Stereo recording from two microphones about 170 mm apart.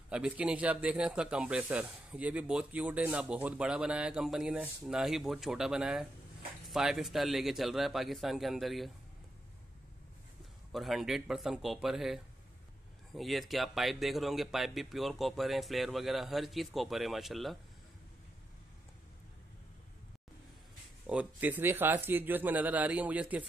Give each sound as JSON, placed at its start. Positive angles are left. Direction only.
{"t": 0.1, "sound": "speech", "side_deg": -5}
{"t": 10.7, "sound": "speech", "side_deg": 0}
{"t": 21.1, "sound": "speech", "side_deg": -10}